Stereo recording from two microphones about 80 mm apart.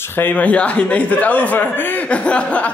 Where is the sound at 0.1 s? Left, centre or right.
Left.